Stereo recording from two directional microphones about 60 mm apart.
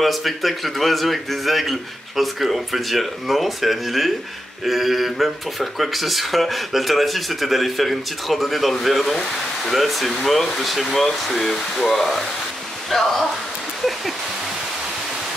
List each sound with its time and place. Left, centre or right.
0.0 s speech: centre